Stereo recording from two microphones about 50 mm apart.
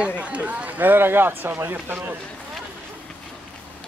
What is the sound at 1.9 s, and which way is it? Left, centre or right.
Speech, right.